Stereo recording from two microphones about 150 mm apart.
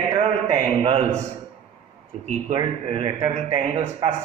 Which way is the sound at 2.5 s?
40° right (ahead or behind).